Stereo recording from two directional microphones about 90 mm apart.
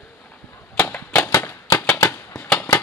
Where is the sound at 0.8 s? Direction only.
25° left (ahead or behind).